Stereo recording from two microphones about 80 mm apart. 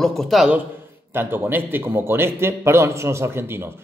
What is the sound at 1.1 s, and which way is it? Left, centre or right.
A man's voice, right.